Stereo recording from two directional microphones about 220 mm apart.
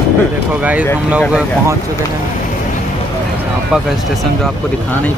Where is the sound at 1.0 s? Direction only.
5° right (ahead or behind).